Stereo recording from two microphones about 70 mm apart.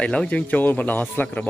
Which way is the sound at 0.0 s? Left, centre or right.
Centre.